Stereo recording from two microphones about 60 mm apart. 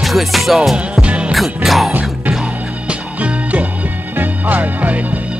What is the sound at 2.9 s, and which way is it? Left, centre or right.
Music, right.